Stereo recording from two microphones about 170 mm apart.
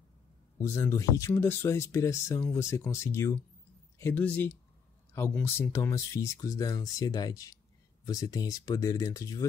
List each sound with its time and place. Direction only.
0.6 s speech: 15° left (ahead or behind)